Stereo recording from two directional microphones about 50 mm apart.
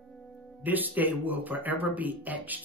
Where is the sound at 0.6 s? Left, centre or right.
Right.